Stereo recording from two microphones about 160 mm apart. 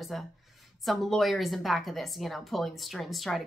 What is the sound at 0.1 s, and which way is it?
A woman's voice, centre (ahead or behind).